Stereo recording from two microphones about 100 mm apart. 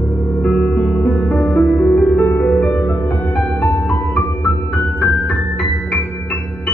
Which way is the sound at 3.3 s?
15° left (ahead or behind).